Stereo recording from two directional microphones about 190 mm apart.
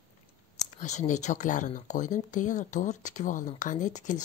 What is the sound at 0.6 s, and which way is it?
Speech, 40° left (ahead or behind).